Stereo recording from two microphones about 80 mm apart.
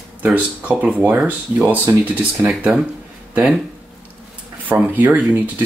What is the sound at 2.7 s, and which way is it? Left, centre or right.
Speech, centre.